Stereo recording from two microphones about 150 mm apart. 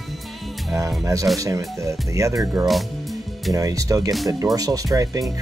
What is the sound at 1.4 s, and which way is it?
Speech, 20° right (ahead or behind).